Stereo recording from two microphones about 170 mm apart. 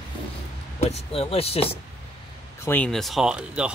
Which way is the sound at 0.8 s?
35° left (ahead or behind).